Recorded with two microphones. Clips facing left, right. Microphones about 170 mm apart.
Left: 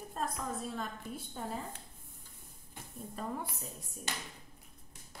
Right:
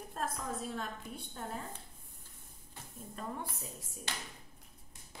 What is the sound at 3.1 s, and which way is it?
Speech, centre (ahead or behind).